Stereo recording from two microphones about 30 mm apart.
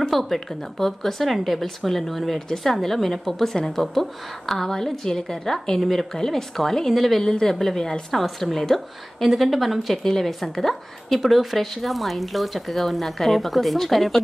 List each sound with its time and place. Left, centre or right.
0.1 s a woman's voice: centre
7.2 s a woman's voice: centre
10.0 s a woman's voice: centre